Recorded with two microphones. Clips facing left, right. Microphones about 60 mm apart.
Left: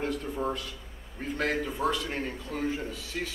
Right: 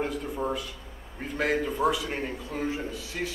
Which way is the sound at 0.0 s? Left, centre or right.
Centre.